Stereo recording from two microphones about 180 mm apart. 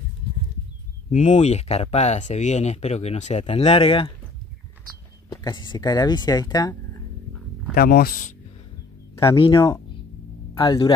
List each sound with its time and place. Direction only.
1.1 s speech: 40° left (ahead or behind)
5.3 s speech: 25° left (ahead or behind)
7.7 s speech: 55° left (ahead or behind)
9.1 s a sound: 15° left (ahead or behind)
10.5 s speech: 30° left (ahead or behind)